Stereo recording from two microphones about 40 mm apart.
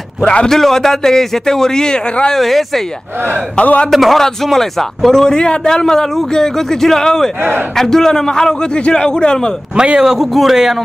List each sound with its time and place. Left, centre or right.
0.2 s a man's voice: left
0.5 s a man's voice: centre
2.3 s speech: centre
3.5 s a man's voice: left
3.9 s a man's voice: centre
9.9 s a man's voice: centre